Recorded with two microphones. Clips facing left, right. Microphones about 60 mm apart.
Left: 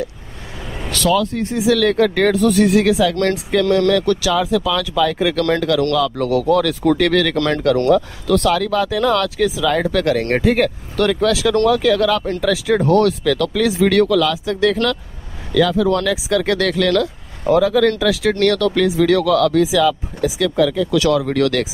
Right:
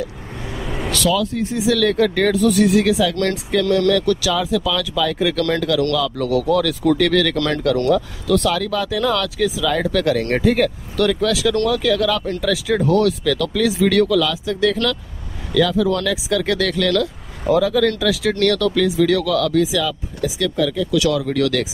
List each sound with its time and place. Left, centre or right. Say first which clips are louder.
0.6 s vehicle: right 3 dB; centre
0.9 s speech: left 3 dB; left
14.0 s speech: left 2 dB; left
20.2 s speech: left 1 dB; left